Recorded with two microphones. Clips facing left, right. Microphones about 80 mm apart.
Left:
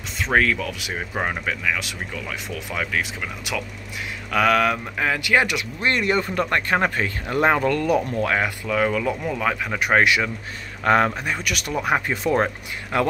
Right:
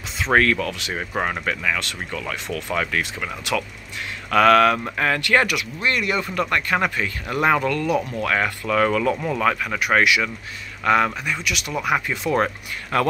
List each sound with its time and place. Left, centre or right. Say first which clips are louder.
0.2 s speech: right 2 dB; centre
5.5 s speech: even; left
8.4 s speech: right 2 dB; centre
9.8 s speech: left 3 dB; left
12.9 s speech: right 1 dB; centre